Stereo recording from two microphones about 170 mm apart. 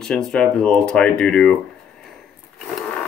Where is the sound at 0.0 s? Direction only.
5° left (ahead or behind).